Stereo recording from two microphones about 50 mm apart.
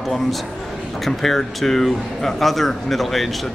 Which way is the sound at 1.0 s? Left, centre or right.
Centre.